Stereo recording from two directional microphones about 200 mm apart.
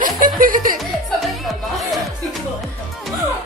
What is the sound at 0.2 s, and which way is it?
Chuckle, 45° right (ahead or behind).